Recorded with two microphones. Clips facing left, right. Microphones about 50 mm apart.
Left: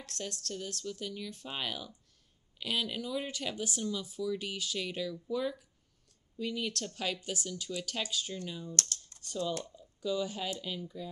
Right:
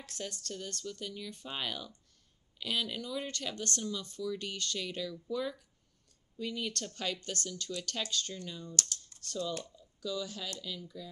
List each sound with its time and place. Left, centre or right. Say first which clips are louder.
0.0 s speech: left 1 dB; centre; by 11.1 s left